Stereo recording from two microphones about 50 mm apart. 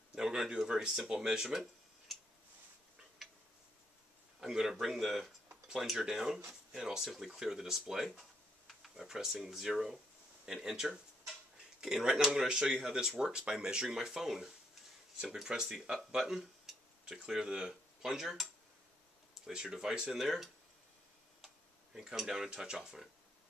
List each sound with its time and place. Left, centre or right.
0.1 s speech: centre
3.2 s tick-tock: centre
4.4 s speech: centre
21.9 s speech: centre